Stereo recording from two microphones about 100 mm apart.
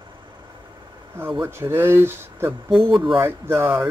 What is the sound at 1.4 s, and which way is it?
Speech, 25° right (ahead or behind).